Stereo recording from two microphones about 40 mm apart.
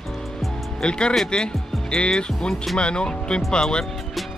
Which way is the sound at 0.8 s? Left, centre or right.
Left.